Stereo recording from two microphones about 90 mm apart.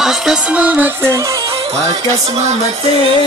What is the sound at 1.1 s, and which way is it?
Music, 40° right (ahead or behind).